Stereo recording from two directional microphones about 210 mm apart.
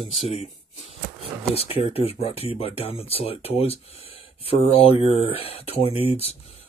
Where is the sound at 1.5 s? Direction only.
30° left (ahead or behind).